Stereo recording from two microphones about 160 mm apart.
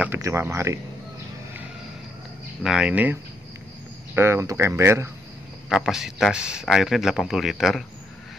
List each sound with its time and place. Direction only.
0.0 s speech: 15° right (ahead or behind)
2.6 s speech: 5° right (ahead or behind)
5.7 s speech: centre (ahead or behind)